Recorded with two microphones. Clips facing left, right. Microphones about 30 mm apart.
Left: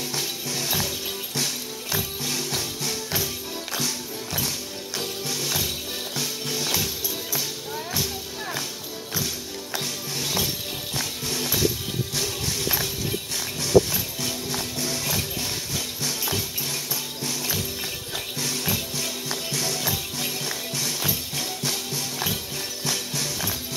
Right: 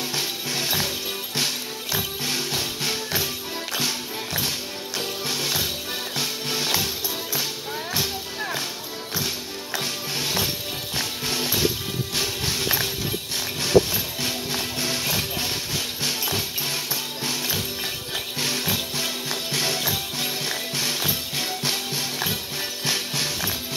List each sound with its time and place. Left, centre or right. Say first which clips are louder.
0.1 s music: right 2 dB; right
6.1 s music: right 2 dB; right
7.9 s music: right 3 dB; right
9.8 s music: right 2 dB; right
14.2 s music: right 3 dB; right
18.6 s music: right 2 dB; right
19.8 s music: right 2 dB; right